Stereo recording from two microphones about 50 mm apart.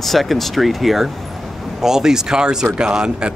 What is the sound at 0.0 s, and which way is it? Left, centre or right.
Speech, centre.